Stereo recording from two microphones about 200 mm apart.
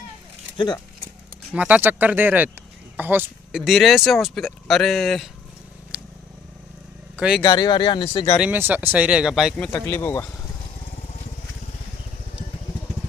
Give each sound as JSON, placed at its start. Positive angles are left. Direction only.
{"t": 1.5, "sound": "speech", "side_deg": -5}
{"t": 5.9, "sound": "vehicle", "side_deg": -5}
{"t": 7.2, "sound": "speech", "side_deg": -5}
{"t": 7.4, "sound": "speech", "side_deg": 20}
{"t": 8.4, "sound": "speech", "side_deg": -10}
{"t": 9.7, "sound": "speech", "side_deg": 10}